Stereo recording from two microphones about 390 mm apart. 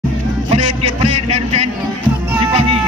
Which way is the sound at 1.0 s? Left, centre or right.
Centre.